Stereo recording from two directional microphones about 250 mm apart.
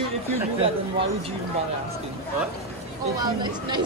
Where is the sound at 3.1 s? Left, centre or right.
Centre.